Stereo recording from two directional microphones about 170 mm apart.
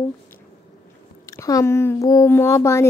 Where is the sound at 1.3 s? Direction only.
20° left (ahead or behind).